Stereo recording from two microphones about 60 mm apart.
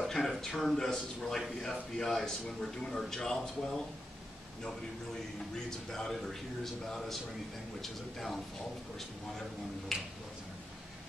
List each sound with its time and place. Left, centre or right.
0.0 s a sound: centre
0.6 s a man's voice: centre
5.7 s a man's voice: centre
9.9 s a man's voice: centre